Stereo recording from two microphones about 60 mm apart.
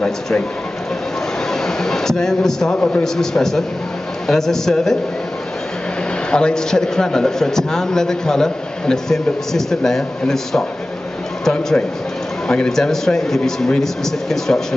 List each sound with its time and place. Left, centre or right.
1.5 s a sound: centre
2.7 s a man's voice: left
3.0 s a man's voice: centre
6.3 s a man's voice: centre